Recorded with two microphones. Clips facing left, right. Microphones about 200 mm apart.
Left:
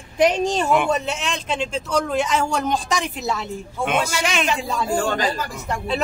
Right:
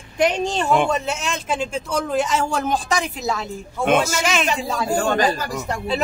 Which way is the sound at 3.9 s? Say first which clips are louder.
Right 5 dB; 45° right (ahead or behind).